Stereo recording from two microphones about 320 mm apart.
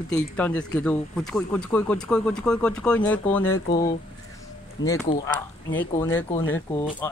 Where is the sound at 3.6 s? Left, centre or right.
Left.